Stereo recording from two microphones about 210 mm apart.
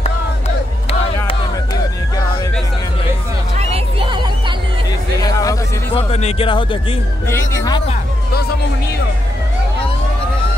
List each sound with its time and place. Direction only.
3.5 s music: 25° right (ahead or behind)
5.2 s a sound: 15° left (ahead or behind)
5.9 s speech: 30° left (ahead or behind)
7.2 s speech: 15° left (ahead or behind)